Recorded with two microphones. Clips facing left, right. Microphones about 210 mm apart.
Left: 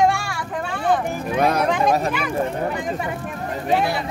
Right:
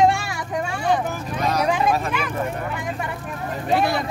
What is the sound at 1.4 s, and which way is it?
Speech, 55° left (ahead or behind).